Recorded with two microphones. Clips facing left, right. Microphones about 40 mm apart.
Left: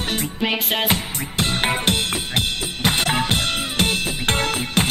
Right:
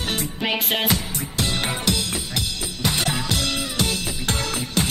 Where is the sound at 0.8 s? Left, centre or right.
Left.